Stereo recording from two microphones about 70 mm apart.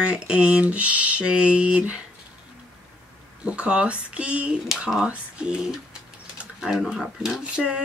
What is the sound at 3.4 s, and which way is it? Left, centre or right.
Speech, centre.